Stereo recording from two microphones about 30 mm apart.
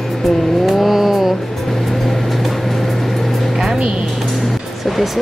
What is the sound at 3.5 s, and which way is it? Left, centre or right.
Music, centre.